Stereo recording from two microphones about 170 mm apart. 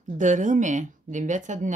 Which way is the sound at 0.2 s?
45° right (ahead or behind).